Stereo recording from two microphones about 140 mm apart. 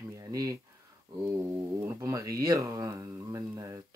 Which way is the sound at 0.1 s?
25° right (ahead or behind).